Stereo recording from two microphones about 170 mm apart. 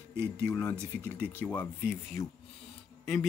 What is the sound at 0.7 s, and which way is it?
Speech, 15° right (ahead or behind).